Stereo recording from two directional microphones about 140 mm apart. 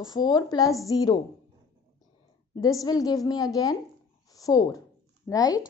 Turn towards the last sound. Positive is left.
turn(degrees=25)  # may be behind; listen again after turning